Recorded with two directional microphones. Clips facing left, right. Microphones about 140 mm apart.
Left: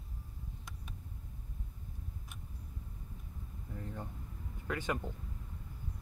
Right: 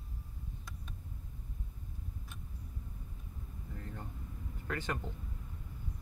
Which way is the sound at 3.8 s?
15° left (ahead or behind).